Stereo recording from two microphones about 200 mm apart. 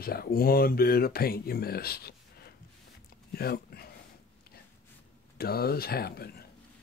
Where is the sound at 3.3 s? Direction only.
50° left (ahead or behind).